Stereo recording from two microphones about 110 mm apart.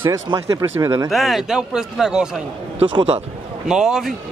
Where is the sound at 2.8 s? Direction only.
50° right (ahead or behind).